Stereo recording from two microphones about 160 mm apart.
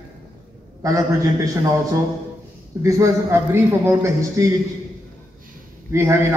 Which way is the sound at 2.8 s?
15° right (ahead or behind).